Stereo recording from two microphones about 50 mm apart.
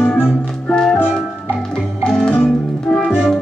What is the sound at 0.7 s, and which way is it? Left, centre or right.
Music, centre.